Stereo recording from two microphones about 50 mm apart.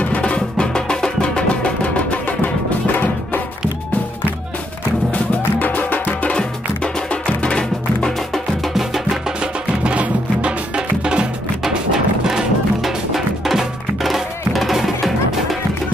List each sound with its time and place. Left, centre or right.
0.0 s music: left
5.1 s music: left
6.3 s music: centre
8.7 s music: centre
9.4 s music: right
11.6 s music: centre